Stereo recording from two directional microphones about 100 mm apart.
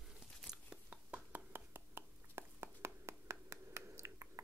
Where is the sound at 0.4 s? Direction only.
5° right (ahead or behind).